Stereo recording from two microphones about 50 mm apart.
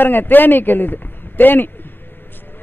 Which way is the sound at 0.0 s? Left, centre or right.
Left.